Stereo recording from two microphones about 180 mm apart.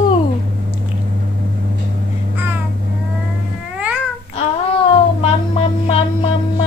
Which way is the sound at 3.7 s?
10° right (ahead or behind).